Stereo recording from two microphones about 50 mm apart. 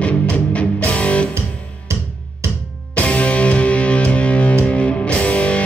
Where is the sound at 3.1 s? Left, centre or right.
Left.